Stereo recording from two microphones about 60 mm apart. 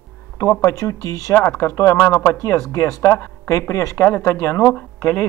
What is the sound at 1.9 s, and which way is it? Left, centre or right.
Speech, left.